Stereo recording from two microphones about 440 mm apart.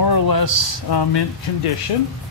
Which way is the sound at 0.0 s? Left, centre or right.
Left.